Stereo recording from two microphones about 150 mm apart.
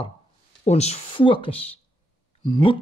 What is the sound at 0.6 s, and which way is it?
Speech, 45° left (ahead or behind).